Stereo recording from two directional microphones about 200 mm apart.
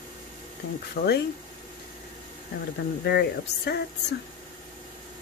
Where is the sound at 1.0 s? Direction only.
50° left (ahead or behind).